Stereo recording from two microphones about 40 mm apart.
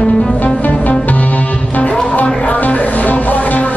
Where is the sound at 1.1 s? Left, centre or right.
Left.